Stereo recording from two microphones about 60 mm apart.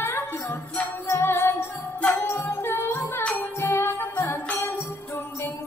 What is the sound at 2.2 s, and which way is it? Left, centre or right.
Music, left.